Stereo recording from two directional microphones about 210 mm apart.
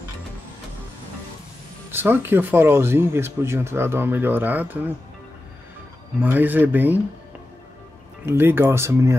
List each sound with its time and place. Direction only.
1.9 s speech: 10° right (ahead or behind)
6.2 s speech: 10° right (ahead or behind)
8.3 s speech: 10° right (ahead or behind)